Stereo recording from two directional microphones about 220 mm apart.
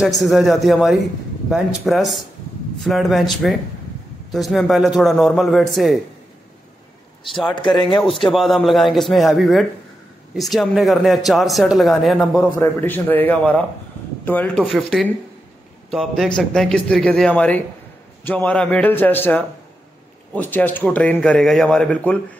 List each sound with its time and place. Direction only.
0.2 s speech: centre (ahead or behind)
7.5 s speech: 20° left (ahead or behind)
8.0 s speech: centre (ahead or behind)
12.4 s a man's voice: 10° left (ahead or behind)